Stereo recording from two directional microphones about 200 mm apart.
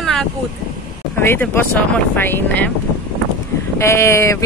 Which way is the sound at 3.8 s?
15° left (ahead or behind).